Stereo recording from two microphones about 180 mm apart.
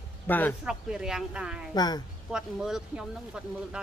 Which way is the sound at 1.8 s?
20° left (ahead or behind).